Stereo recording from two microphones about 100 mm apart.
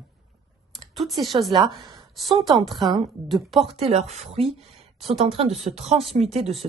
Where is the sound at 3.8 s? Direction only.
80° right.